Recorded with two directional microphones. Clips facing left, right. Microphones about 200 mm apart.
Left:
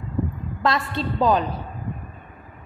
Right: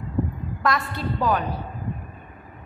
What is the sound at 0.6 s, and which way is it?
Music, 25° left (ahead or behind).